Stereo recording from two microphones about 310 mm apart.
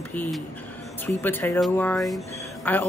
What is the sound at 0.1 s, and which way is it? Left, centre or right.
Speech, centre.